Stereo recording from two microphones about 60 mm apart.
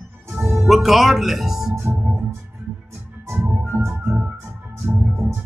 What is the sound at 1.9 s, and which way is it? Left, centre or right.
Music, right.